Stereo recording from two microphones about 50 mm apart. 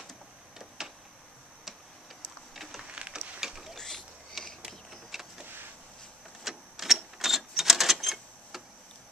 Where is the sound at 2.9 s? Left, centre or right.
Centre.